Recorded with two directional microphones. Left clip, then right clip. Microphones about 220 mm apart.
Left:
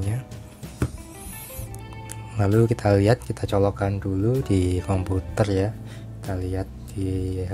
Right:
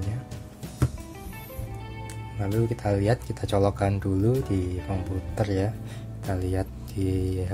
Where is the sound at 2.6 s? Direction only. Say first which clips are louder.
Left 5 dB; 20° left (ahead or behind); by 4.5 s centre (ahead or behind).